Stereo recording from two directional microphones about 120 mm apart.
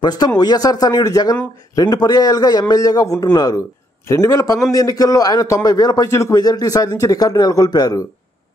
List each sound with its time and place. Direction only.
0.0 s a man's voice: 35° left (ahead or behind)